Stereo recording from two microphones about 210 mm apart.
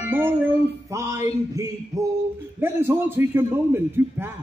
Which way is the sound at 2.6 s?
10° right (ahead or behind).